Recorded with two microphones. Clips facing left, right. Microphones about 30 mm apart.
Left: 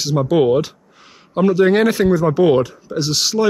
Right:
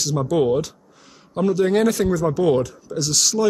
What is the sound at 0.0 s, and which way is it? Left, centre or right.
Speech, left.